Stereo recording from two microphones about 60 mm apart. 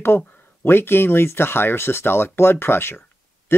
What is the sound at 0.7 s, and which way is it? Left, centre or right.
Speech, left.